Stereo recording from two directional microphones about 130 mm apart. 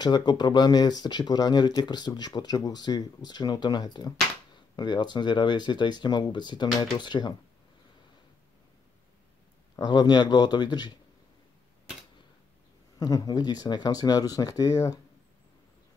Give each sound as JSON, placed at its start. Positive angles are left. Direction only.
{"t": 0.0, "sound": "speech", "side_deg": 35}
{"t": 9.8, "sound": "speech", "side_deg": 35}
{"t": 13.0, "sound": "speech", "side_deg": 30}